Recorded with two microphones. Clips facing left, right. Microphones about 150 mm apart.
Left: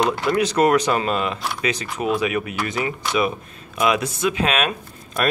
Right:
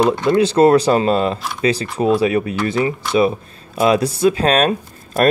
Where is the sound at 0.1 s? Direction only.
25° right (ahead or behind).